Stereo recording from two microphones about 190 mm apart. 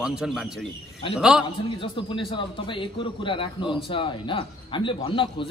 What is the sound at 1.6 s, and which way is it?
Speech, 25° left (ahead or behind).